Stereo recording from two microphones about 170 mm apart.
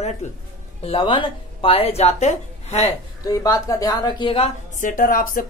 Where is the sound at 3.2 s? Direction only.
20° left (ahead or behind).